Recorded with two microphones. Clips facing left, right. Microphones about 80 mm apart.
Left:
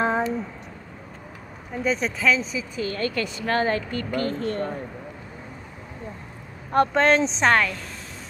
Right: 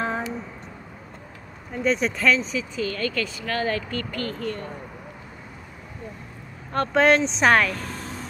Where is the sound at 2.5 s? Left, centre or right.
Left.